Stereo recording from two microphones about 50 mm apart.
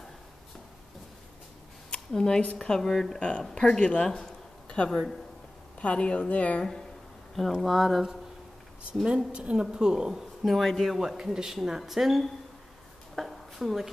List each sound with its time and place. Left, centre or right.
1.9 s a sound: centre
2.5 s speech: centre
3.2 s speech: left
5.8 s speech: left
7.6 s speech: centre
9.0 s a woman's voice: centre
13.2 s a sound: centre
13.6 s speech: centre